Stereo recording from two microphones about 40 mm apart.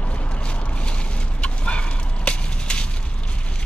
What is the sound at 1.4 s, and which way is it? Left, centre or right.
Fowl, left.